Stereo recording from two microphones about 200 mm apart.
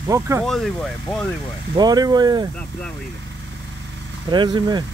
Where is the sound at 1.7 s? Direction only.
20° right (ahead or behind).